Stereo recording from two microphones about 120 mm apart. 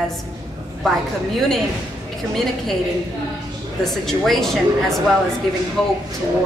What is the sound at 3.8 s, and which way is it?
Speech, 5° left (ahead or behind).